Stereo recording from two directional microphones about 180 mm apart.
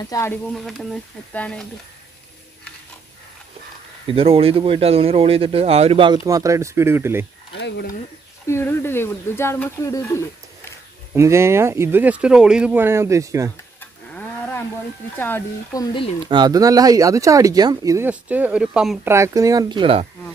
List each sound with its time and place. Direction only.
0.0 s speech: 20° left (ahead or behind)
0.7 s speech: centre (ahead or behind)
4.1 s speech: 30° right (ahead or behind); by 7.2 s 15° right (ahead or behind)
7.5 s speech: 75° left (ahead or behind)
8.5 s speech: 15° left (ahead or behind)
11.1 s speech: 15° right (ahead or behind)
13.7 s cattle: 10° left (ahead or behind)
15.1 s speech: 10° left (ahead or behind)
16.3 s speech: 25° right (ahead or behind); by 18.9 s 5° right (ahead or behind)
19.0 s speech: 15° right (ahead or behind)